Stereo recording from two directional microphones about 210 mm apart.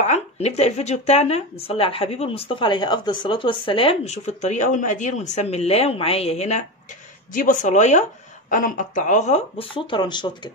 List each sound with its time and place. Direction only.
0.0 s speech: 30° left (ahead or behind)